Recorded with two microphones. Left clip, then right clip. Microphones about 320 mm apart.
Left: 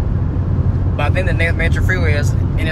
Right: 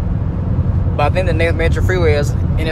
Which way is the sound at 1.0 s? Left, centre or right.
Centre.